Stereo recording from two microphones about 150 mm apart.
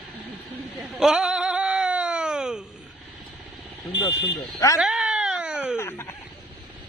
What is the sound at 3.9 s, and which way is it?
Speech, 25° left (ahead or behind).